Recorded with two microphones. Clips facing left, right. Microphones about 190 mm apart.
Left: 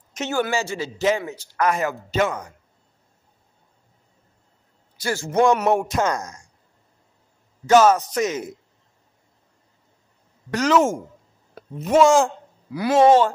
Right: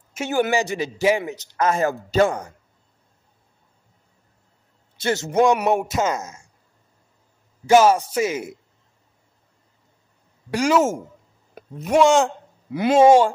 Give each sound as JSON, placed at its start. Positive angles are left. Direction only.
{"t": 0.1, "sound": "a man's voice", "side_deg": -15}
{"t": 4.9, "sound": "a man's voice", "side_deg": -25}
{"t": 5.3, "sound": "a man's voice", "side_deg": -15}
{"t": 5.7, "sound": "speech", "side_deg": 0}
{"t": 7.6, "sound": "a man's voice", "side_deg": -10}
{"t": 10.5, "sound": "a man's voice", "side_deg": -10}
{"t": 11.6, "sound": "a sound", "side_deg": -15}
{"t": 11.9, "sound": "speech", "side_deg": 0}
{"t": 12.7, "sound": "speech", "side_deg": -20}
{"t": 13.0, "sound": "a man's voice", "side_deg": -10}